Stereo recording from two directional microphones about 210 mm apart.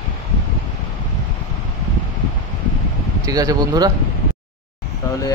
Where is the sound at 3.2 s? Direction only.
15° right (ahead or behind).